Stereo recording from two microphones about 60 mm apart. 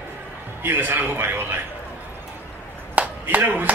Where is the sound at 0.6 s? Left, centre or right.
Right.